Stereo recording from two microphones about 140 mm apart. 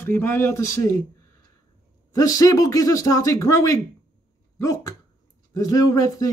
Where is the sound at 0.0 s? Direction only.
15° left (ahead or behind).